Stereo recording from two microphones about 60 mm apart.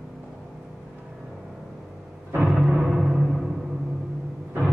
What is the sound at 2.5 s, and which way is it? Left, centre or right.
Timpani, centre.